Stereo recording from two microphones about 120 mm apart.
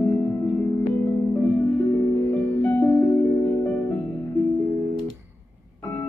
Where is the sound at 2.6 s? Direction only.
15° left (ahead or behind).